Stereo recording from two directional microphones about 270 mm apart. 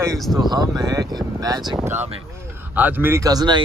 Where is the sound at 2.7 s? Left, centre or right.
Centre.